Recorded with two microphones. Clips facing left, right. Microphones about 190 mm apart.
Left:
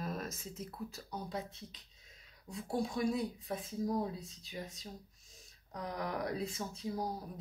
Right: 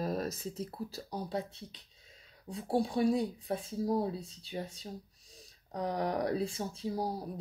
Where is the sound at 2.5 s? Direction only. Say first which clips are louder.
Right 5 dB; 35° right (ahead or behind).